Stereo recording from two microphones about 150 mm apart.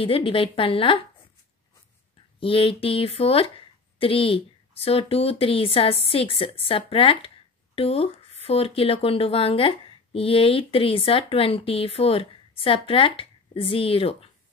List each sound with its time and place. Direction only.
0.0 s speech: 35° left (ahead or behind)
2.4 s speech: 40° left (ahead or behind)